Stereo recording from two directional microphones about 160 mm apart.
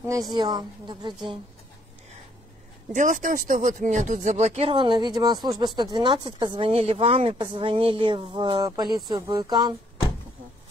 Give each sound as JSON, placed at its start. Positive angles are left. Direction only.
{"t": 0.3, "sound": "a woman's voice", "side_deg": -25}
{"t": 2.9, "sound": "a woman's voice", "side_deg": -50}